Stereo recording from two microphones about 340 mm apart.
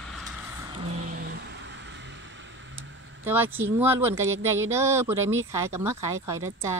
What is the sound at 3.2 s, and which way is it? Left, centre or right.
Speech, centre.